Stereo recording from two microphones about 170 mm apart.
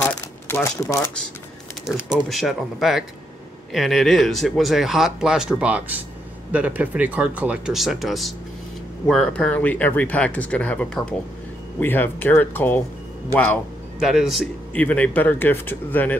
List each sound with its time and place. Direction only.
0.0 s shuffling cards: 10° left (ahead or behind)
2.1 s speech: centre (ahead or behind)
14.0 s speech: centre (ahead or behind)
14.8 s speech: 10° left (ahead or behind)